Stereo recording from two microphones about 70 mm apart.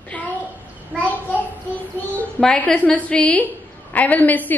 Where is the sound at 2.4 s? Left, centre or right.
Centre.